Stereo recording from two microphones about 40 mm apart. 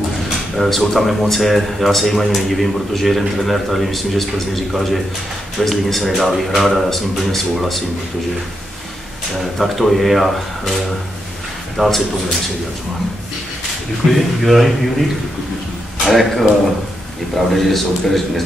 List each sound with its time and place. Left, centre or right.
0.6 s speech: centre
9.6 s speech: centre
11.7 s a man's voice: centre
14.0 s speech: centre
14.4 s speech: centre
16.1 s speech: centre
17.5 s speech: centre